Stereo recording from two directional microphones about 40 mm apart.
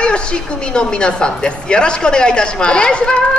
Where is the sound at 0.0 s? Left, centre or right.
Left.